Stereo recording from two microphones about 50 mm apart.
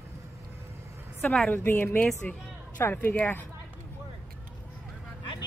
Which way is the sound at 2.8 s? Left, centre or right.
Left.